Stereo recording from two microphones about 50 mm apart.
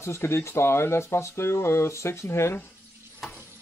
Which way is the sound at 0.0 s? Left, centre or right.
Left.